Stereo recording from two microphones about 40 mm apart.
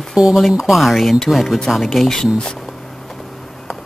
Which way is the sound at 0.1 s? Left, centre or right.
Centre.